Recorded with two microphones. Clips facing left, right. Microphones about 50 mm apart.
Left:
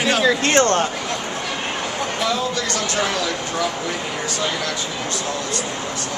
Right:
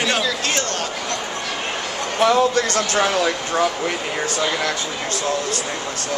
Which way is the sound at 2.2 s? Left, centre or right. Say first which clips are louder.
Right 8 dB; right.